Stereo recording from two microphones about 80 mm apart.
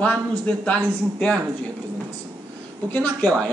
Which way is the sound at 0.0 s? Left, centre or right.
Centre.